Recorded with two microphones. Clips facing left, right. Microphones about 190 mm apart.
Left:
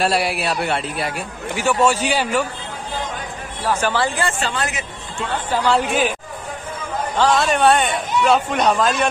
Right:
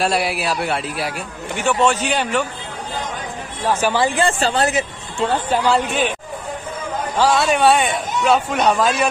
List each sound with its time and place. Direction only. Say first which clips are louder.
0.0 s a man's voice: even; centre (ahead or behind)
3.6 s speech: right 2 dB; 15° right (ahead or behind)
4.4 s speech: right 6 dB; 35° right (ahead or behind)
5.7 s a man's voice: left 2 dB; 5° left (ahead or behind)
7.2 s a man's voice: right 1 dB; 5° right (ahead or behind)